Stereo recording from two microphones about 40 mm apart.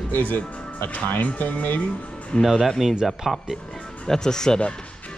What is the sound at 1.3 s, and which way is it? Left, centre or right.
Speech, left.